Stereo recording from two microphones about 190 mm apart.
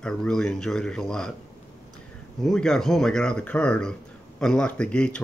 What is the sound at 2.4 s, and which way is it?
Speech, 5° left (ahead or behind).